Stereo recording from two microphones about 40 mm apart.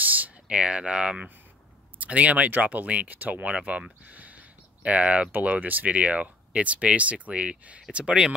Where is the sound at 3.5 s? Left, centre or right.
Right.